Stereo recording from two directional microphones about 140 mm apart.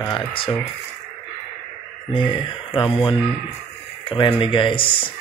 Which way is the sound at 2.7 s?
35° left (ahead or behind).